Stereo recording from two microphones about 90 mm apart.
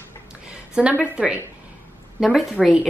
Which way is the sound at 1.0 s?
15° right (ahead or behind).